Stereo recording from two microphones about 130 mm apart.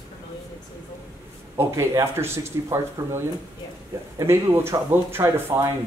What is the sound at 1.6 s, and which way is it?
Speech, 20° right (ahead or behind).